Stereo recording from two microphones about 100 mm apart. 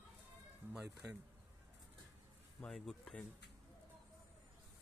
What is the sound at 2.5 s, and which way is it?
Speech, 5° left (ahead or behind).